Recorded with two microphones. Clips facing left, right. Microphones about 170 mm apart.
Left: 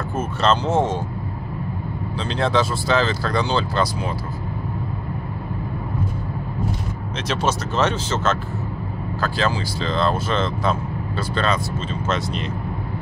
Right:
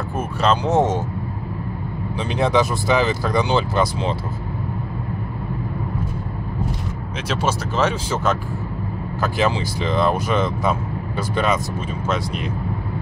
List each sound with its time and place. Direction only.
0.2 s speech: 10° right (ahead or behind)
2.1 s speech: 15° right (ahead or behind)
7.2 s speech: 5° right (ahead or behind)